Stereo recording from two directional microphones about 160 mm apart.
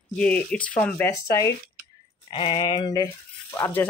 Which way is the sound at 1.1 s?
20° left (ahead or behind).